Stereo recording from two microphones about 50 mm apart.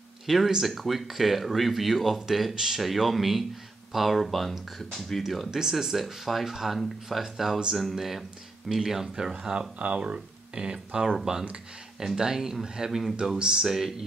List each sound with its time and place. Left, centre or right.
0.3 s speech: centre